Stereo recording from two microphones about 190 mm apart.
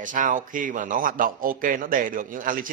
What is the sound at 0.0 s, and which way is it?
A man's voice, 45° right (ahead or behind).